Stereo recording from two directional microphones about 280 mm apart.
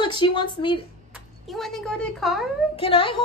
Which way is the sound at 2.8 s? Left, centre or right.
Centre.